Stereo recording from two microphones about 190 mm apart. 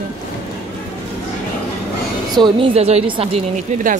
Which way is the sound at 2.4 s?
30° right (ahead or behind).